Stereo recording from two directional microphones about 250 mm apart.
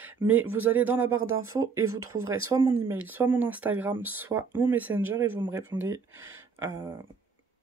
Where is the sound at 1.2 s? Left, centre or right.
Right.